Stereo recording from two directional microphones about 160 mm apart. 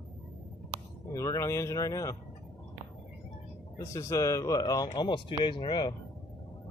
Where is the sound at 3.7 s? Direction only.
20° left (ahead or behind).